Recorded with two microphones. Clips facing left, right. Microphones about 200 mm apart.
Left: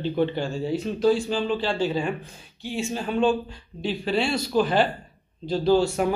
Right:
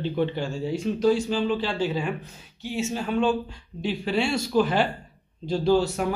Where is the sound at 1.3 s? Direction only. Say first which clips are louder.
Even; 5° right (ahead or behind).